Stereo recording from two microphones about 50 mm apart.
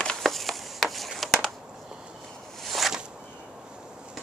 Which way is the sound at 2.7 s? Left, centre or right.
Centre.